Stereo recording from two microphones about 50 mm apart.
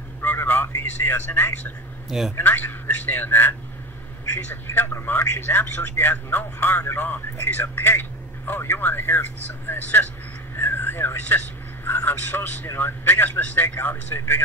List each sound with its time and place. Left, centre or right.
0.2 s a sound: left
2.0 s speech: centre
2.3 s a man's voice: left